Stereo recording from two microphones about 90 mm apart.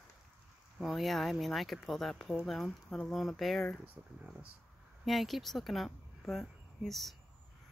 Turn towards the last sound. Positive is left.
turn(degrees=0)  # may be behind; listen again after turning